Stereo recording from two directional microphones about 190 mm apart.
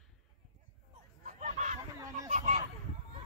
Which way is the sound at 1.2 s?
40° right (ahead or behind).